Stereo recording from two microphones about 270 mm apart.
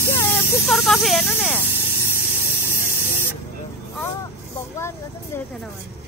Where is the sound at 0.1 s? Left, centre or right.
Centre.